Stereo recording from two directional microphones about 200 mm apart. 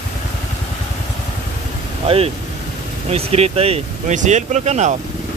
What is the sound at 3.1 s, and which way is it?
Speech, 30° right (ahead or behind).